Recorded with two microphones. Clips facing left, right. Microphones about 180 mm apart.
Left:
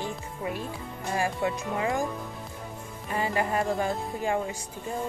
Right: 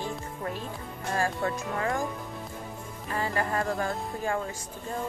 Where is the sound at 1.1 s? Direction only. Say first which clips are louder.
Left 1 dB; 15° left (ahead or behind).